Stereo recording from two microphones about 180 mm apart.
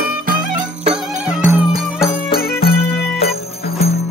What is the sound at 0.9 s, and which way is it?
Music, 5° right (ahead or behind).